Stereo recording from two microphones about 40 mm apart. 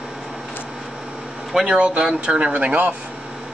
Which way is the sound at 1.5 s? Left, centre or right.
Centre.